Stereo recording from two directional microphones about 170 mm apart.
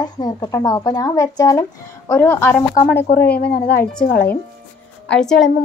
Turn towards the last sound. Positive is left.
turn(degrees=5)  # may be behind; listen again after turning